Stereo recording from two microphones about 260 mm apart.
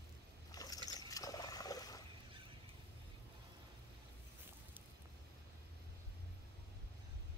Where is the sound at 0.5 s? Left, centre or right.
Centre.